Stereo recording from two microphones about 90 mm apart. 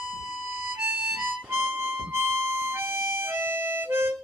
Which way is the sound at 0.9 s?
20° right (ahead or behind).